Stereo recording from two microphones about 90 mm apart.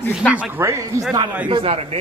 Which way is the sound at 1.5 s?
90° right.